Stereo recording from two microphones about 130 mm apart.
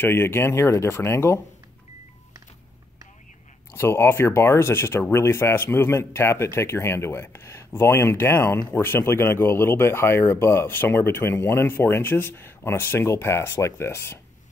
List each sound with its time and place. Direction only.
0.0 s speech: 15° left (ahead or behind)
3.7 s speech: 20° left (ahead or behind)